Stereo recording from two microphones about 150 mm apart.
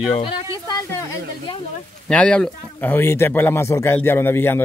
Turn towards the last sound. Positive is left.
turn(degrees=15)  # may be behind; listen again after turning